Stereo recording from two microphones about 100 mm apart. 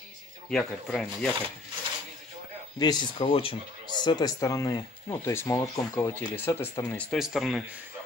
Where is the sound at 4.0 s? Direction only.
45° left (ahead or behind).